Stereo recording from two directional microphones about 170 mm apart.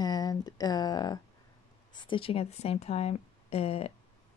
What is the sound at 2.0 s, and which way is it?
Speech, 30° left (ahead or behind).